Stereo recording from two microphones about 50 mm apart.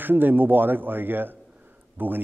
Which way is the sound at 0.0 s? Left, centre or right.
Right.